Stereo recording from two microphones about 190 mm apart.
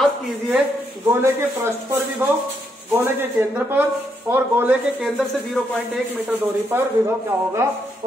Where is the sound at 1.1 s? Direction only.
15° right (ahead or behind).